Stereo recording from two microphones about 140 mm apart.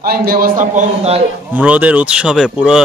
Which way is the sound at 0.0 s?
90° right.